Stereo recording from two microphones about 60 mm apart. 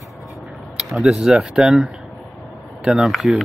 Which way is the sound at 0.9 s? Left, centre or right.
Centre.